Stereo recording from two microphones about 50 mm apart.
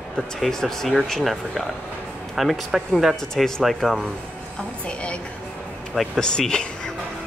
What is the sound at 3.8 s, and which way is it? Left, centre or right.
Speech, centre.